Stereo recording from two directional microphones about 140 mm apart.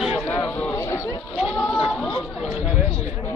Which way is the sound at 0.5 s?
10° left (ahead or behind).